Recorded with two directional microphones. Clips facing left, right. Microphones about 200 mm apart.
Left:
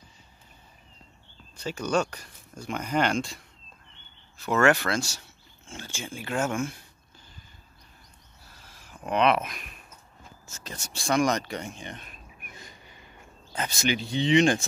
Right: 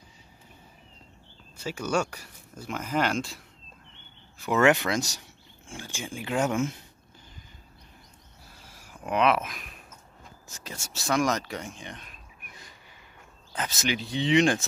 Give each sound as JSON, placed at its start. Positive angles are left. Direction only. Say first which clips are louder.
{"t": 1.6, "sound": "speech", "louder": "left 1 dB", "side_deg": -5}
{"t": 4.4, "sound": "speech", "louder": "right 1 dB", "side_deg": -15}
{"t": 8.7, "sound": "speech", "louder": "left 1 dB", "side_deg": -10}
{"t": 13.6, "sound": "speech", "louder": "left 2 dB", "side_deg": 0}